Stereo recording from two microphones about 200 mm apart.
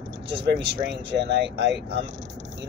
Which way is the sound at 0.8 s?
60° right (ahead or behind).